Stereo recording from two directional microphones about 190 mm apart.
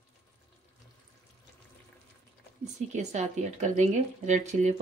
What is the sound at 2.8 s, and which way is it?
Speech, 35° right (ahead or behind).